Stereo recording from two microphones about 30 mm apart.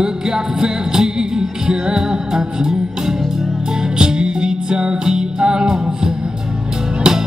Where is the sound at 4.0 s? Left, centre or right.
Right.